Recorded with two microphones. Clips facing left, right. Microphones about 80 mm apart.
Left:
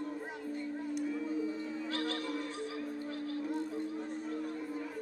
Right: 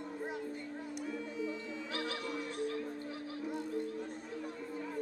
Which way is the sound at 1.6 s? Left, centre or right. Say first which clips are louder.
Left 4 dB; left.